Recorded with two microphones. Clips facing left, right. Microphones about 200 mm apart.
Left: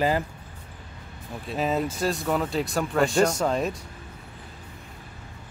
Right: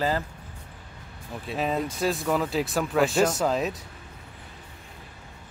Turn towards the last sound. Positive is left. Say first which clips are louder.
# even
turn(degrees=0)  # may be behind; listen again after turning